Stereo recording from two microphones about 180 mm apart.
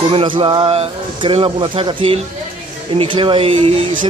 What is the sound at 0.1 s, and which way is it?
Speech, 30° right (ahead or behind).